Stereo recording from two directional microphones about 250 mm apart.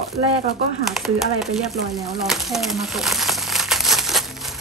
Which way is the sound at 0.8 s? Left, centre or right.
Centre.